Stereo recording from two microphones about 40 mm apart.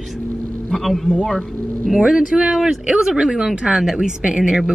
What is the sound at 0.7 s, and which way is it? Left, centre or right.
Speech, centre.